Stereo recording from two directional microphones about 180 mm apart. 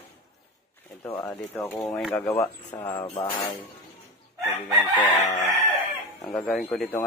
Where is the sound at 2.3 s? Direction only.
15° left (ahead or behind).